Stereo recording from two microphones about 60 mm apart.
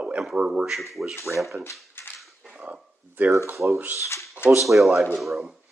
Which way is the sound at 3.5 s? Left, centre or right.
Right.